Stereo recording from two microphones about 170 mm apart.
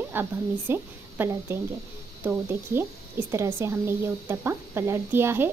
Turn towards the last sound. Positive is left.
turn(degrees=-15)  # may be behind; listen again after turning